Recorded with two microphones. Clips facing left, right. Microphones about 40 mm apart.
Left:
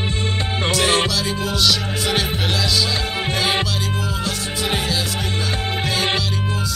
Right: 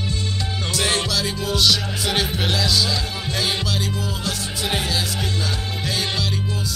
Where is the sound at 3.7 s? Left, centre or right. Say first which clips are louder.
Left 2 dB; centre.